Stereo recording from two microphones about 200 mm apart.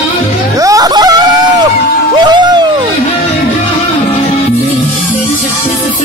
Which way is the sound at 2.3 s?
20° right (ahead or behind).